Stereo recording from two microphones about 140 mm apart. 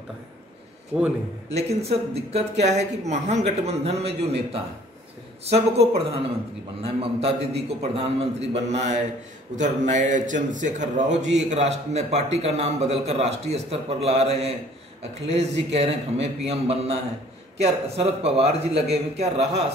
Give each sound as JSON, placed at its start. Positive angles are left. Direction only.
{"t": 0.9, "sound": "a man's voice", "side_deg": -5}
{"t": 1.5, "sound": "a man's voice", "side_deg": -50}